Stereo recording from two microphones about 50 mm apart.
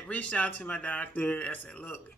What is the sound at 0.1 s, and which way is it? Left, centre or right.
Speech, left.